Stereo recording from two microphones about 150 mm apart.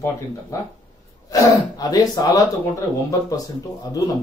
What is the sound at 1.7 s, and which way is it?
Speech, 25° left (ahead or behind).